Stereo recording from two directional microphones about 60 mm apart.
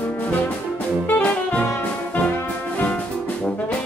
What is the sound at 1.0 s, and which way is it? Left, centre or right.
Music, left.